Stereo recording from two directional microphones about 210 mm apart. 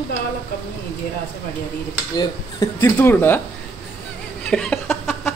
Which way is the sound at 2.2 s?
15° left (ahead or behind).